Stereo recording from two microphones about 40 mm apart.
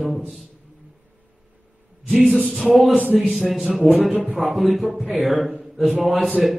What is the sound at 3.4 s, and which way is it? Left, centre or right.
A man's voice, centre.